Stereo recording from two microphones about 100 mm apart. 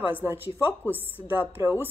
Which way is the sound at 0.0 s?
15° right (ahead or behind).